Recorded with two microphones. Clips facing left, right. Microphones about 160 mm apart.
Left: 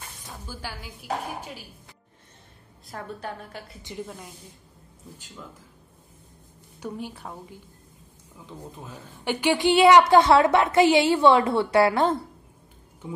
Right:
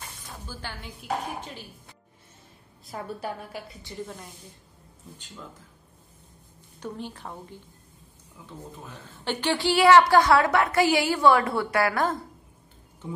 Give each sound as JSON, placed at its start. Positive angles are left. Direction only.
{"t": 0.5, "sound": "a woman's voice", "side_deg": 10}
{"t": 2.9, "sound": "a woman's voice", "side_deg": -5}
{"t": 4.0, "sound": "a woman's voice", "side_deg": 5}
{"t": 6.8, "sound": "a woman's voice", "side_deg": 10}